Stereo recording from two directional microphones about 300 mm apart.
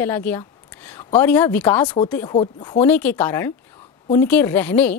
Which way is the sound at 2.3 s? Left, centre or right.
Centre.